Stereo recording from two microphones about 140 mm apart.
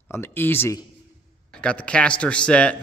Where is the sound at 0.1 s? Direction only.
15° left (ahead or behind).